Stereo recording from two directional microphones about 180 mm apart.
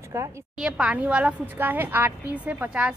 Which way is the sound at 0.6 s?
5° right (ahead or behind).